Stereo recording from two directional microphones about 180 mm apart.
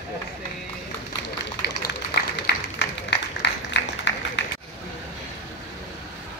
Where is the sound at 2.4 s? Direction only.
75° left (ahead or behind).